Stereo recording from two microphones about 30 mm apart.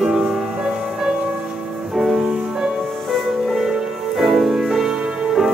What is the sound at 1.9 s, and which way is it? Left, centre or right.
Music, centre.